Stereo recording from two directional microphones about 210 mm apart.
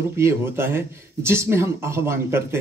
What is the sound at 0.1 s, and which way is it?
A man's voice, 10° right (ahead or behind).